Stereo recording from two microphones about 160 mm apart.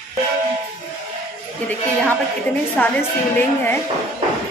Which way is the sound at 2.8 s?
10° left (ahead or behind).